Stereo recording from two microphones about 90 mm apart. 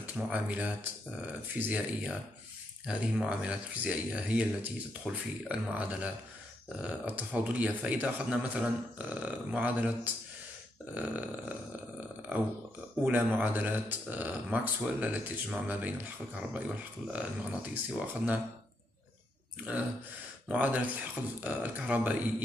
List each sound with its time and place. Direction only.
0.0 s speech: 20° right (ahead or behind)
13.0 s speech: 20° right (ahead or behind)
17.1 s speech: 15° right (ahead or behind)
19.7 s speech: 15° right (ahead or behind)